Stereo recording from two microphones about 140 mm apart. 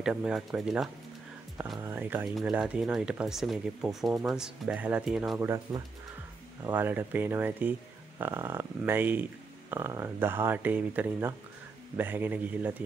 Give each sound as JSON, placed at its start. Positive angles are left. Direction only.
{"t": 0.0, "sound": "speech", "side_deg": -5}
{"t": 1.8, "sound": "speech", "side_deg": -15}
{"t": 5.4, "sound": "speech", "side_deg": -25}